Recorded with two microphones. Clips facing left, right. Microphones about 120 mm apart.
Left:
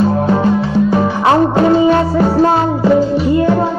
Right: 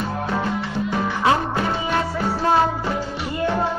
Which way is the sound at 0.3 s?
35° left (ahead or behind).